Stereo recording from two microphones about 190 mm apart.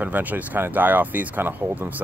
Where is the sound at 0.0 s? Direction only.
10° right (ahead or behind).